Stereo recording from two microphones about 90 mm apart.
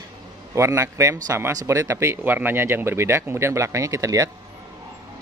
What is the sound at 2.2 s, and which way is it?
Speech, 20° right (ahead or behind).